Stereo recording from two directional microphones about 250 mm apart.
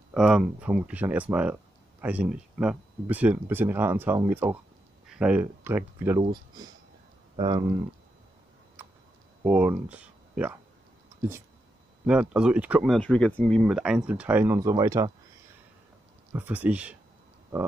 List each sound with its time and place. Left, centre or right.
0.1 s speech: centre
7.3 s speech: centre
9.4 s speech: centre
12.1 s speech: centre
16.3 s speech: centre